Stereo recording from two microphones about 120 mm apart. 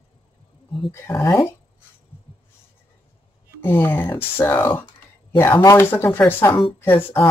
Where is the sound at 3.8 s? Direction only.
20° left (ahead or behind).